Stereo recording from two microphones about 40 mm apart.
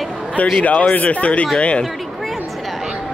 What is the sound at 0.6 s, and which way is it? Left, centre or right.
Speech, left.